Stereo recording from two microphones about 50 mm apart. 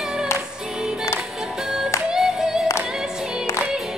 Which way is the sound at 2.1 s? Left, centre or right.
Centre.